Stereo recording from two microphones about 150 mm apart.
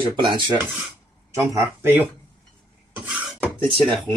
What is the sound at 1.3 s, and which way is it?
Speech, 20° right (ahead or behind).